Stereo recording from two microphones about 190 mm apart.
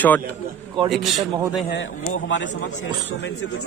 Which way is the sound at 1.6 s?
75° left (ahead or behind).